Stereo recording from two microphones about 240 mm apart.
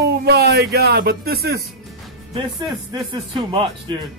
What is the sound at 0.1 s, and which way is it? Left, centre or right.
Speech, right.